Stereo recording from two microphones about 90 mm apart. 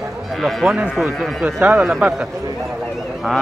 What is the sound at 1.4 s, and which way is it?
Speech, 20° right (ahead or behind).